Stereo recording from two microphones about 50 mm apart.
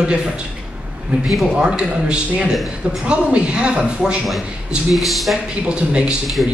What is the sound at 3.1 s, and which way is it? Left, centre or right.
Speech, centre.